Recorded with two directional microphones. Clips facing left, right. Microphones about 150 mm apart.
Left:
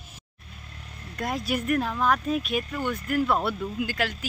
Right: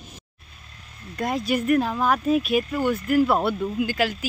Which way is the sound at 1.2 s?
Centre (ahead or behind).